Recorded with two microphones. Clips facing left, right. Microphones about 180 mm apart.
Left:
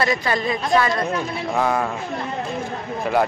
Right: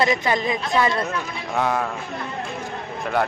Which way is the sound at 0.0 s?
20° right (ahead or behind).